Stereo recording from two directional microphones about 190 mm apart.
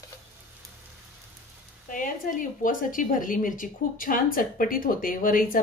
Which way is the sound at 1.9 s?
45° left (ahead or behind).